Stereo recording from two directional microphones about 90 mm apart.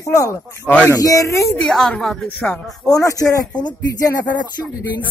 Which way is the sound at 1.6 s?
10° left (ahead or behind).